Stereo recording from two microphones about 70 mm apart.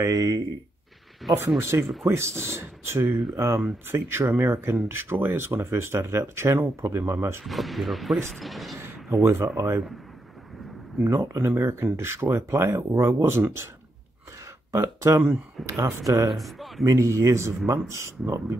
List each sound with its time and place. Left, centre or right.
0.0 s speech: right
1.2 s speech: centre
1.6 s speech: right
7.4 s speech: centre
8.7 s speech: right
11.0 s speech: right
14.7 s speech: right
16.3 s speech: centre
16.8 s speech: right